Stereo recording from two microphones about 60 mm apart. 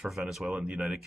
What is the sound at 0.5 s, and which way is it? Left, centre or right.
Speech, right.